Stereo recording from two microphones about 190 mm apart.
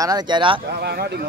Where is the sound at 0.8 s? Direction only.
55° right (ahead or behind).